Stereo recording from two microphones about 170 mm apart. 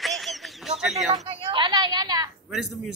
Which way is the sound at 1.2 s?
30° right (ahead or behind).